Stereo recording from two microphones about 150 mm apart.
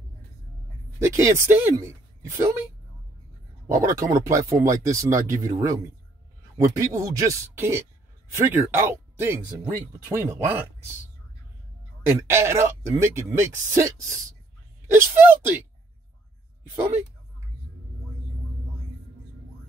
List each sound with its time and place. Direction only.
0.9 s speech: 20° right (ahead or behind)
3.8 s speech: 20° right (ahead or behind)
12.1 s speech: 15° right (ahead or behind)